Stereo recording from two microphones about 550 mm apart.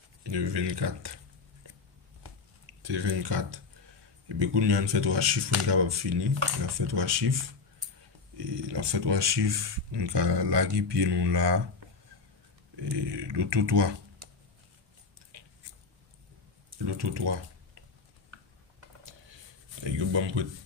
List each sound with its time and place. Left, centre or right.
0.2 s speech: right
3.0 s speech: right
8.4 s speech: right
12.7 s speech: right
16.7 s speech: right
19.8 s speech: right